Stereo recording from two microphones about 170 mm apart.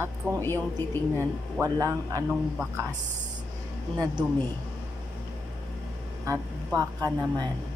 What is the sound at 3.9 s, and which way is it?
Speech, 25° right (ahead or behind).